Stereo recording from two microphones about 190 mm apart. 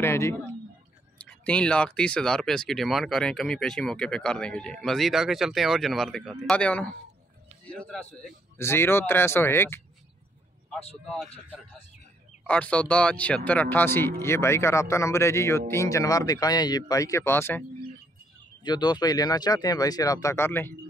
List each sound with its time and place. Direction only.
0.0 s a woman's voice: 15° left (ahead or behind)
11.1 s speech: 5° left (ahead or behind)
12.4 s speech: 5° left (ahead or behind)
18.6 s speech: 25° left (ahead or behind)